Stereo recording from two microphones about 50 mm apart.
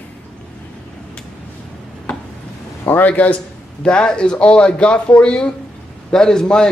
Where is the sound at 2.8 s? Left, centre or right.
Left.